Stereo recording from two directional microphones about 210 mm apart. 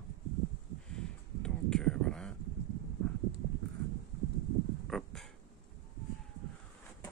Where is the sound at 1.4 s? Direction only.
5° left (ahead or behind).